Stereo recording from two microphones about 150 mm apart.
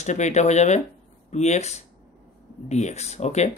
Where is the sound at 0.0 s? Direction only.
50° left (ahead or behind).